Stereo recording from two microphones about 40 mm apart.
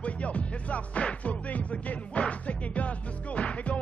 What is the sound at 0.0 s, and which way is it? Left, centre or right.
Music, left.